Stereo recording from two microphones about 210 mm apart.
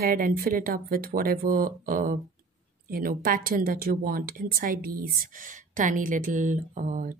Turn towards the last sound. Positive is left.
turn(degrees=-40)  # may be behind; listen again after turning